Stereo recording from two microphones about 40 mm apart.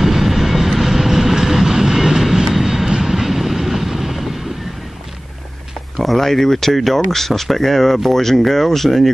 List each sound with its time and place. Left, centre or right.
0.0 s vehicle: centre
5.9 s speech: centre